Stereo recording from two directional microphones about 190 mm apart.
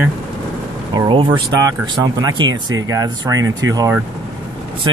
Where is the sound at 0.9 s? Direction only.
25° right (ahead or behind).